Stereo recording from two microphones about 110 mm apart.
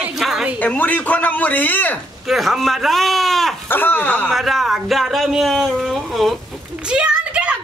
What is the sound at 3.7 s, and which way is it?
Speech, 15° left (ahead or behind).